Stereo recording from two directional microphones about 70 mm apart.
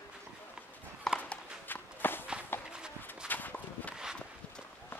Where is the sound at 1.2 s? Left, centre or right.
Left.